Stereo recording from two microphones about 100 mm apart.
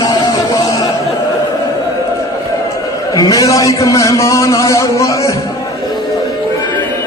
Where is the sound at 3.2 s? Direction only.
35° left (ahead or behind).